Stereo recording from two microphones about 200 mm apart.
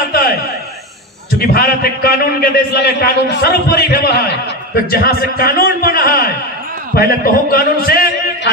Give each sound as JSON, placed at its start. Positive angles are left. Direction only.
{"t": 1.4, "sound": "a man's voice", "side_deg": 50}